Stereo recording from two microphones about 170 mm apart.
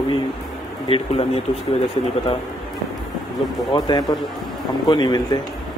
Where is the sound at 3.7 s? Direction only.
25° left (ahead or behind).